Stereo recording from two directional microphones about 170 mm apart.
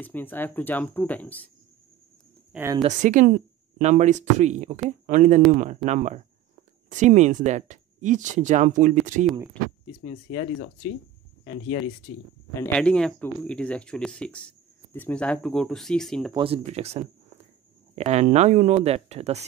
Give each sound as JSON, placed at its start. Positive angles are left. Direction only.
{"t": 0.0, "sound": "speech", "side_deg": 10}
{"t": 2.8, "sound": "speech", "side_deg": -45}
{"t": 10.0, "sound": "speech", "side_deg": 45}
{"t": 12.5, "sound": "speech", "side_deg": 10}
{"t": 16.3, "sound": "speech", "side_deg": -35}